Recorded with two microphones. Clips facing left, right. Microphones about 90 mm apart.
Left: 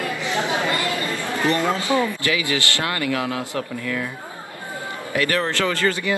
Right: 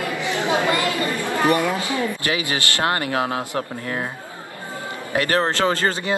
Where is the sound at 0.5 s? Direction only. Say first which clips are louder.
Right 3 dB; 20° right (ahead or behind).